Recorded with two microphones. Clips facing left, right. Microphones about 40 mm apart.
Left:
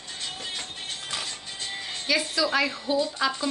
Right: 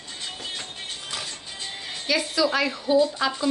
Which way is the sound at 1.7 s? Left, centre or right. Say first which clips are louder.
Right 1 dB; centre.